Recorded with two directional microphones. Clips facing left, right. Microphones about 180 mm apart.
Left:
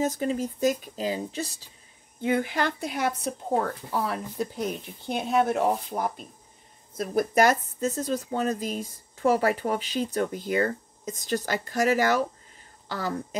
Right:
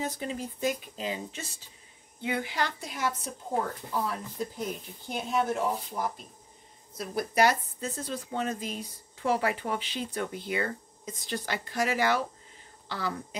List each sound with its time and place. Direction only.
0.0 s speech: 45° left (ahead or behind)
2.2 s speech: 50° left (ahead or behind)
7.0 s speech: 50° left (ahead or behind)